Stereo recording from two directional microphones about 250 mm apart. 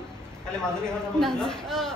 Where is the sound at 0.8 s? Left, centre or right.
Centre.